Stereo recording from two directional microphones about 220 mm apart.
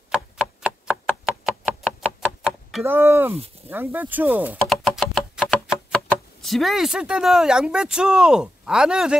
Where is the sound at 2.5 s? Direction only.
Centre (ahead or behind).